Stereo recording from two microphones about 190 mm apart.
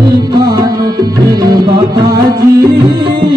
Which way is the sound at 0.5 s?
20° right (ahead or behind).